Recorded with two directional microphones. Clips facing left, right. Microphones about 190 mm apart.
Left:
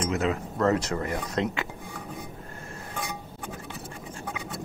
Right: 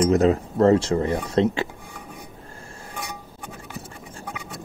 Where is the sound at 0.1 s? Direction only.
35° right (ahead or behind).